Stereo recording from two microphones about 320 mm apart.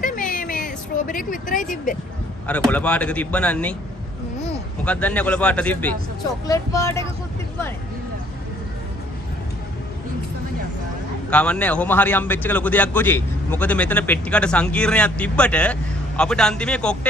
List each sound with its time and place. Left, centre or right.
0.0 s a sound: left
2.4 s a man's voice: centre
4.8 s a man's voice: centre
11.2 s a man's voice: centre